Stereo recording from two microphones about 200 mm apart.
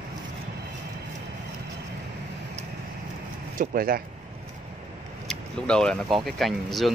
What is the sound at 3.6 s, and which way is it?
Speech, 45° right (ahead or behind).